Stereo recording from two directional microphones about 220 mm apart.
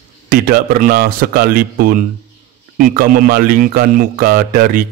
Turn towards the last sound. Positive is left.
turn(degrees=-40)  # may be behind; listen again after turning